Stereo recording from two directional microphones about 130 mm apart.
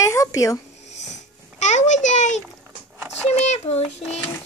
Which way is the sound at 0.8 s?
60° left (ahead or behind).